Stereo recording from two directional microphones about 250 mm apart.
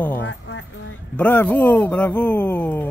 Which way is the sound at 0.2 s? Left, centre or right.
Left.